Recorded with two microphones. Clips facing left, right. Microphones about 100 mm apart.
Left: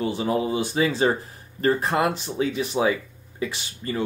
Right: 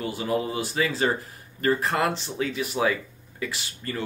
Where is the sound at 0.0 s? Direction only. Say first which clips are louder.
Left 3 dB; 25° left (ahead or behind).